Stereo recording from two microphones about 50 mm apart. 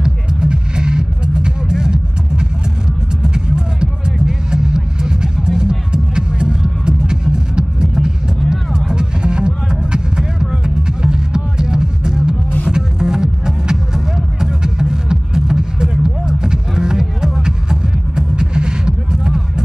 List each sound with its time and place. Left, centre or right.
0.0 s music: centre